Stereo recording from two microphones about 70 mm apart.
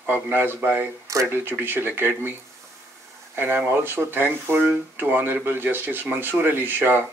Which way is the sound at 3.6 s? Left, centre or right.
Right.